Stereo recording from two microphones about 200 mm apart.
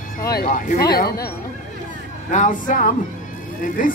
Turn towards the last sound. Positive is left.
turn(degrees=40)  # may be behind; listen again after turning